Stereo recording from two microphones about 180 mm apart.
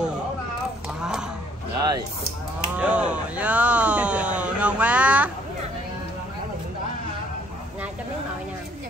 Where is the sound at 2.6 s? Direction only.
10° right (ahead or behind).